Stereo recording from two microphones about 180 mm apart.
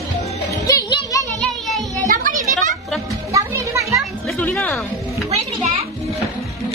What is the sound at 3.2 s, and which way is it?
Music, 15° right (ahead or behind).